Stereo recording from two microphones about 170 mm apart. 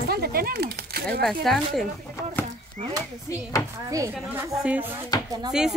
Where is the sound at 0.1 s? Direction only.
65° right (ahead or behind).